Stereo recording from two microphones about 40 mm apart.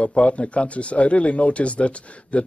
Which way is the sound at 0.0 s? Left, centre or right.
Left.